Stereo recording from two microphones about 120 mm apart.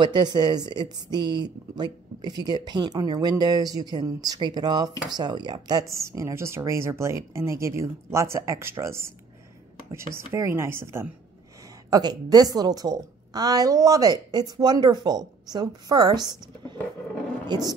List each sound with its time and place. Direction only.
0.0 s speech: 40° right (ahead or behind); by 9.1 s 20° right (ahead or behind)
10.1 s speech: 20° right (ahead or behind)
11.9 s speech: 35° right (ahead or behind)